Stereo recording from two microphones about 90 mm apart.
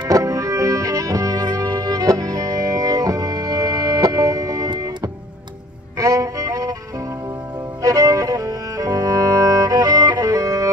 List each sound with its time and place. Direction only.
0.1 s music: 40° right (ahead or behind)
7.8 s music: 40° right (ahead or behind)